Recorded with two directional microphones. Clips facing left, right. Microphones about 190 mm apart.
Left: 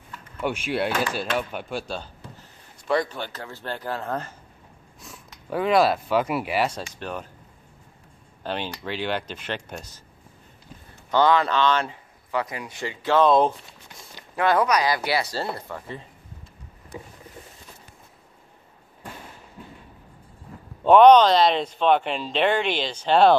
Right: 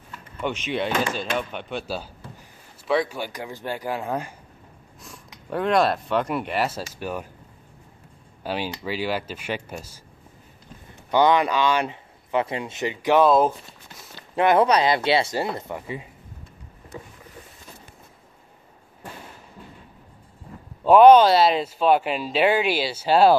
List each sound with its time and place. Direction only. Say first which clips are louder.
0.4 s speech: left 1 dB; 10° left (ahead or behind); by 4.3 s 10° right (ahead or behind)
5.0 s speech: even; centre (ahead or behind)
8.5 s speech: right 2 dB; 5° right (ahead or behind)
11.1 s speech: right 1 dB; 15° right (ahead or behind)
14.3 s speech: right 3 dB; 20° right (ahead or behind)
20.8 s speech: right 1 dB; 5° right (ahead or behind)